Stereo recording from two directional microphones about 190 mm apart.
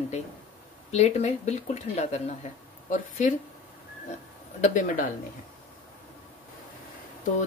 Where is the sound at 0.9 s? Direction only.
35° left (ahead or behind).